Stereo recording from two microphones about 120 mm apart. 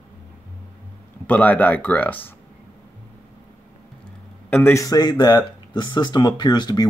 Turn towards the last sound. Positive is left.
turn(degrees=35)  # may be behind; listen again after turning